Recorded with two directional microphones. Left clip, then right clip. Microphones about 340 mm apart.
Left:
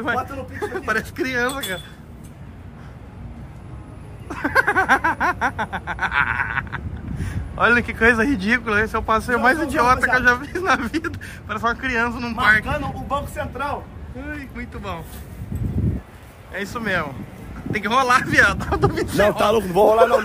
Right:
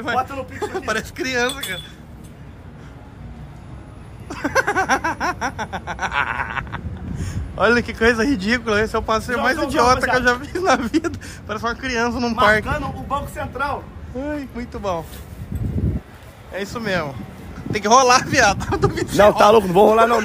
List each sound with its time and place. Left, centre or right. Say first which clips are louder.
0.2 s snicker: right 3 dB; centre
4.3 s snicker: left 1 dB; centre
14.2 s speech: right 4 dB; centre
16.5 s snicker: even; centre
19.3 s a man's voice: right 5 dB; right